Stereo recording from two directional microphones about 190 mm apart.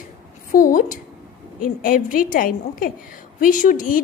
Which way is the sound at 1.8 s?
45° left (ahead or behind).